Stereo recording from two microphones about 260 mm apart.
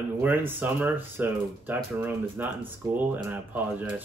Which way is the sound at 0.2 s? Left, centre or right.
Centre.